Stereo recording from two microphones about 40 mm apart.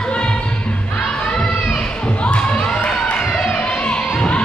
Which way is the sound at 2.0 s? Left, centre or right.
Left.